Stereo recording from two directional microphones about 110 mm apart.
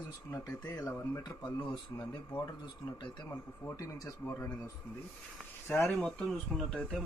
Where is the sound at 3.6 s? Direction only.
30° left (ahead or behind).